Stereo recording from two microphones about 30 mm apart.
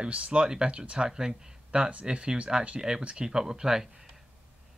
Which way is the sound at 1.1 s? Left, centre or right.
Right.